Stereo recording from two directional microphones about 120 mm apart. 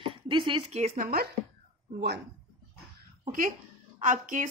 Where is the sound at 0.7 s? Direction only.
65° right (ahead or behind).